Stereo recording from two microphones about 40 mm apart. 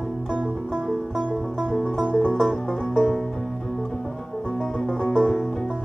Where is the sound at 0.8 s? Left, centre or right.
Centre.